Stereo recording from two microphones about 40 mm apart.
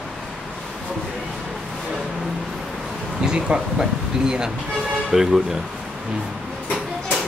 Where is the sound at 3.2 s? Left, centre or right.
Centre.